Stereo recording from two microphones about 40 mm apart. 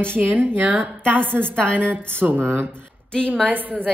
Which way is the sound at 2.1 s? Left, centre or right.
Right.